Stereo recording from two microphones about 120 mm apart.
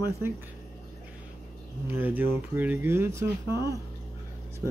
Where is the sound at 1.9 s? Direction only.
15° right (ahead or behind).